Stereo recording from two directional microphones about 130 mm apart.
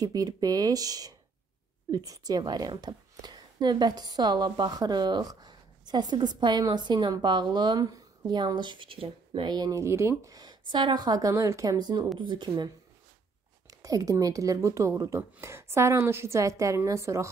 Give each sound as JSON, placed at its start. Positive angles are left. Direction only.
{"t": 0.0, "sound": "a woman's voice", "side_deg": -30}